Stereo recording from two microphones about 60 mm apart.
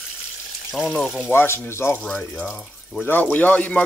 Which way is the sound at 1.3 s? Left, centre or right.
Left.